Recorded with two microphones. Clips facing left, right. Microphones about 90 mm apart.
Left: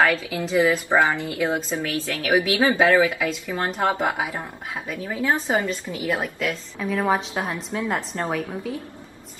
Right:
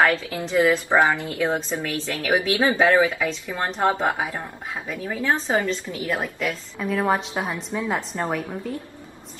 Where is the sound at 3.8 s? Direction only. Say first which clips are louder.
Right 2 dB; 15° left (ahead or behind).